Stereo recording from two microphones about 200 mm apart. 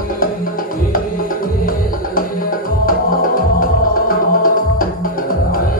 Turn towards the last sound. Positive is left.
turn(degrees=45)  # may be behind; listen again after turning